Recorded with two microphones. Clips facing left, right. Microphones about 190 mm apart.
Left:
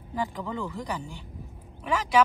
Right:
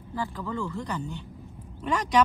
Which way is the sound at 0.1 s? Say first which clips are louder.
Left 1 dB; 20° left (ahead or behind).